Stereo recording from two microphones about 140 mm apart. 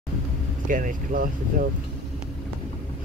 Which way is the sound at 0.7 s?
75° right (ahead or behind).